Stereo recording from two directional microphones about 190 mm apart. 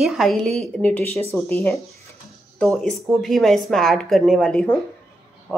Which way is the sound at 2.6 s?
5° left (ahead or behind).